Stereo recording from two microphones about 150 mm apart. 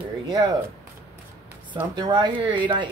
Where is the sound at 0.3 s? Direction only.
25° right (ahead or behind).